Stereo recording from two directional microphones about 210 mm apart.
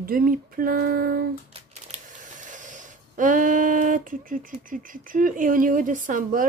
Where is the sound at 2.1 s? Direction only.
35° right (ahead or behind).